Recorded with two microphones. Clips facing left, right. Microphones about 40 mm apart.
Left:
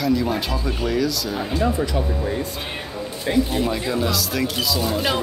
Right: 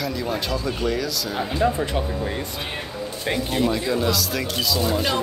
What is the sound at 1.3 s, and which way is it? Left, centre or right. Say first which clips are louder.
Speech: right 2 dB; centre.